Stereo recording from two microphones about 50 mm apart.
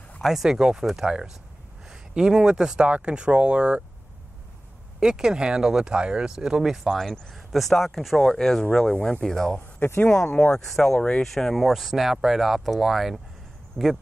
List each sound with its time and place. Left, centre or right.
0.2 s speech: centre; by 3.8 s right
5.0 s speech: centre
7.0 s speech: centre
9.8 s speech: left
10.3 s speech: left
11.3 s speech: centre
13.8 s speech: left